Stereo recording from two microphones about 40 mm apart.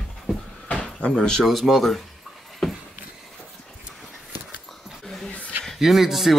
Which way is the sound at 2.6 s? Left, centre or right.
Centre.